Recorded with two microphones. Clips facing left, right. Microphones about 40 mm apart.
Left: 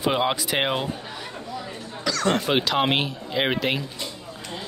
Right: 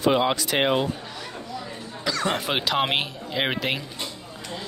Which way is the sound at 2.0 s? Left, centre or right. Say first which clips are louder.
Left 2 dB; centre.